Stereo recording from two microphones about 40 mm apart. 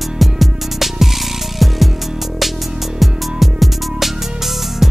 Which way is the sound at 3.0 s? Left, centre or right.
Centre.